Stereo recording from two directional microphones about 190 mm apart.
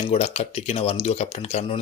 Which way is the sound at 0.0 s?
35° left (ahead or behind).